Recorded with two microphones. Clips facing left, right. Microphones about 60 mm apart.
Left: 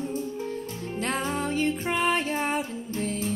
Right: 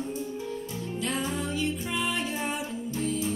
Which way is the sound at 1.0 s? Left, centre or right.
Left.